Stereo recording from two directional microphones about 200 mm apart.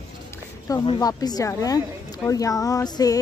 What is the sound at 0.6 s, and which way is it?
Speech, 20° left (ahead or behind).